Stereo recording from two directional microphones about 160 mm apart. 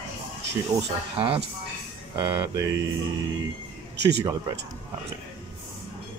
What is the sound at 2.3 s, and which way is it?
Mantra, 20° right (ahead or behind).